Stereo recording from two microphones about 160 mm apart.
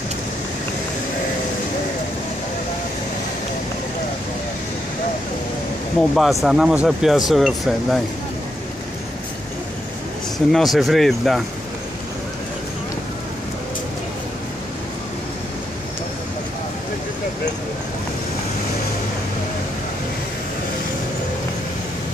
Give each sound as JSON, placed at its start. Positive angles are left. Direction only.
{"t": 5.9, "sound": "speech", "side_deg": 0}
{"t": 10.5, "sound": "speech", "side_deg": 0}